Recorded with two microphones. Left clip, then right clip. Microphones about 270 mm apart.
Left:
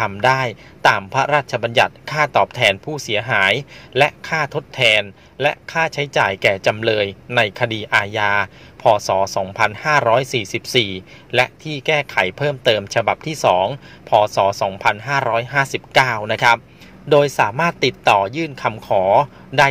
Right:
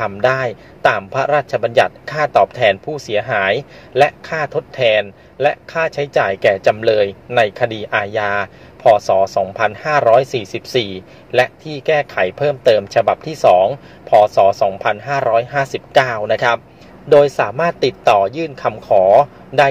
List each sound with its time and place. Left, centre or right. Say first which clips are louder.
0.0 s a man's voice: right 1 dB; left